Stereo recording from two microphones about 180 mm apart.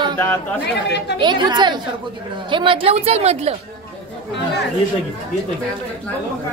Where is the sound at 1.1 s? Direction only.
25° right (ahead or behind).